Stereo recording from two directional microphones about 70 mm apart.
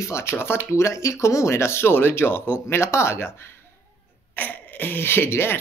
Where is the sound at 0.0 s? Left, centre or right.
Left.